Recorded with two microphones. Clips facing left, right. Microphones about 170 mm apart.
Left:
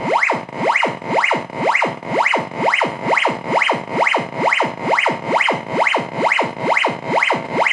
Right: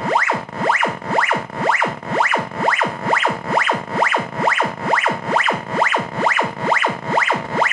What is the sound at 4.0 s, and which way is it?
Music, 5° left (ahead or behind).